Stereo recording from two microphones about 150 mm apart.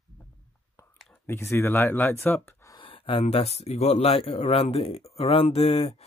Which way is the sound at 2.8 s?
35° left (ahead or behind).